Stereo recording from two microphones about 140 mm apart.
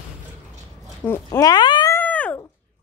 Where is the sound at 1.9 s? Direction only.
10° left (ahead or behind).